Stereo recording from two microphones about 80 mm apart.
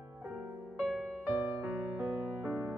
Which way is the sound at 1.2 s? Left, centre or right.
Centre.